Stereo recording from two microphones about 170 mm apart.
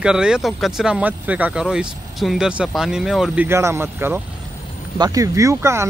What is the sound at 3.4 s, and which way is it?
Speech, 15° right (ahead or behind).